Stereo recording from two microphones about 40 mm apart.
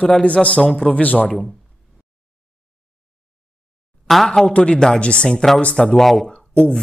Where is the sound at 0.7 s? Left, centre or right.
Centre.